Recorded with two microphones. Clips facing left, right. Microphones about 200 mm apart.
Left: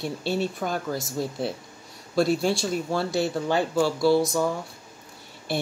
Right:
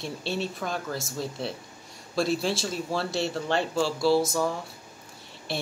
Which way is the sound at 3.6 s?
55° left (ahead or behind).